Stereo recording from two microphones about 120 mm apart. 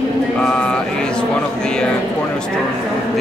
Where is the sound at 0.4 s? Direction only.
10° left (ahead or behind).